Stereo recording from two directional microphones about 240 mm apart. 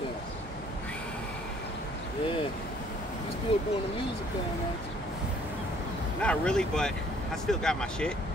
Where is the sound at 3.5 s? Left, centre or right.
Left.